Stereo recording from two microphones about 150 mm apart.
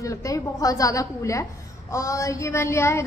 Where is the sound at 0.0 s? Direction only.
20° left (ahead or behind).